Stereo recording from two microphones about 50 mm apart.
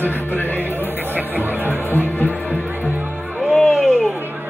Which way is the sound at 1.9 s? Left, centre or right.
Left.